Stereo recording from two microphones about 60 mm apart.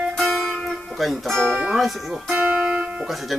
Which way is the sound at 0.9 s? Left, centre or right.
Centre.